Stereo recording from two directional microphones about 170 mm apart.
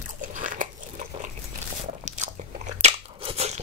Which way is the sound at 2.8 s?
35° right (ahead or behind).